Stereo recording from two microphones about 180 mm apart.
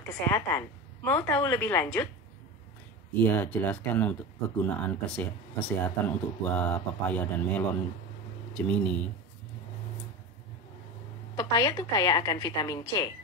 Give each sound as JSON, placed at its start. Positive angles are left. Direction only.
{"t": 0.1, "sound": "speech", "side_deg": 10}
{"t": 3.3, "sound": "speech", "side_deg": 10}
{"t": 11.3, "sound": "a woman's voice", "side_deg": 20}